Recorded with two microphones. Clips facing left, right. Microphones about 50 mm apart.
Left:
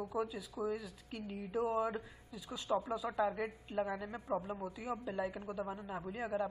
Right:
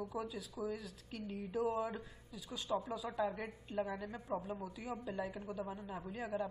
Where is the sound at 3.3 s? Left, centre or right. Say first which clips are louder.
Left 3 dB; centre.